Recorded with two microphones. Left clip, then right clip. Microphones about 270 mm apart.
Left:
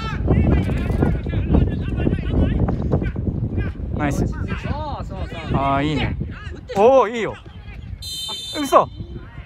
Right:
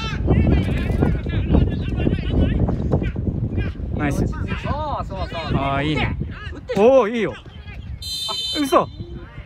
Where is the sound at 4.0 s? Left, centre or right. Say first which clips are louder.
Left 1 dB; left.